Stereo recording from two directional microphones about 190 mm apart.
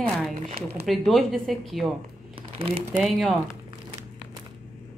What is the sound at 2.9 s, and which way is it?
Speech, centre (ahead or behind).